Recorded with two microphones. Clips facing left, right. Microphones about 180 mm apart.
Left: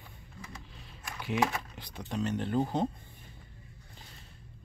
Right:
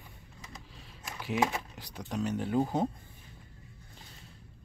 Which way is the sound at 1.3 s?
20° right (ahead or behind).